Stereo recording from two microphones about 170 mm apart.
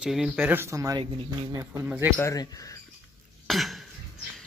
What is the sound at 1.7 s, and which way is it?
Speech, 10° right (ahead or behind).